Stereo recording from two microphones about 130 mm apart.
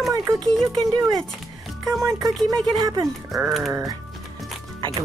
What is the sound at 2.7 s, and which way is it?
Speech, 30° right (ahead or behind).